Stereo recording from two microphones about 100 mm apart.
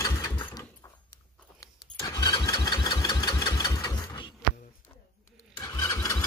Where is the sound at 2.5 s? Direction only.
50° left (ahead or behind).